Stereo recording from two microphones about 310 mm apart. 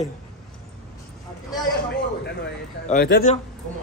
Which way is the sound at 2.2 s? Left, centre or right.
Left.